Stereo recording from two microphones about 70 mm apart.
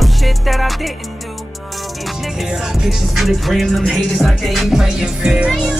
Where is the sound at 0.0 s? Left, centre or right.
Centre.